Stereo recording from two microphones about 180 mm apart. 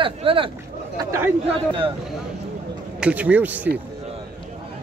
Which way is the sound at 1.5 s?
30° right (ahead or behind).